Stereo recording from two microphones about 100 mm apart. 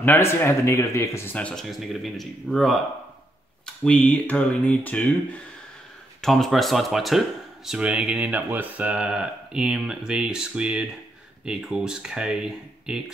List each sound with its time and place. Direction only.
0.0 s speech: 25° left (ahead or behind)
1.3 s speech: 10° left (ahead or behind)
3.6 s speech: 10° left (ahead or behind)
6.2 s speech: 5° left (ahead or behind)